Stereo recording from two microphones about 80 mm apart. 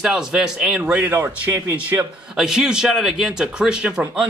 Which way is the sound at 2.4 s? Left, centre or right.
Centre.